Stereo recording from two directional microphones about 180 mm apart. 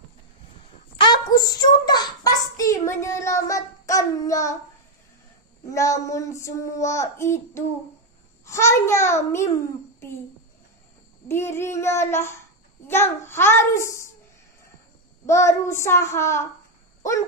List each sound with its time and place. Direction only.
0.9 s child singing: 25° left (ahead or behind)
5.7 s child singing: 15° left (ahead or behind)
11.2 s child singing: 15° left (ahead or behind)
15.2 s child singing: 15° left (ahead or behind)